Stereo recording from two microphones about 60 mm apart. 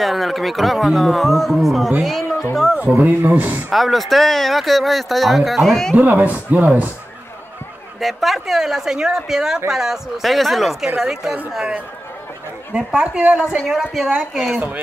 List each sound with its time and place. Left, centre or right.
0.0 s speech: centre
3.0 s speech: right
3.7 s speech: centre
5.9 s speech: right
8.0 s speech: centre
12.7 s speech: centre
13.7 s speech: centre